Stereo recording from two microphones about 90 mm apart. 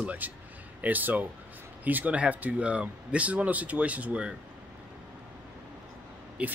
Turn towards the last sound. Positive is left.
turn(degrees=-15)  # may be behind; listen again after turning